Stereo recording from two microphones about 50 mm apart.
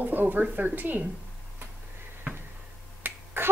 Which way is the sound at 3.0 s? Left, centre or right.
Right.